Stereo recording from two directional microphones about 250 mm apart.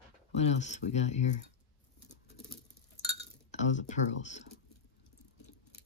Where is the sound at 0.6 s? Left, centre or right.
Left.